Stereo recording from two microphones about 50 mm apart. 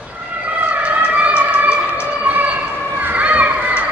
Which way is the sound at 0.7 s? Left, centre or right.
Right.